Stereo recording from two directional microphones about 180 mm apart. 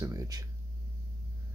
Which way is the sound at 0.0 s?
20° right (ahead or behind).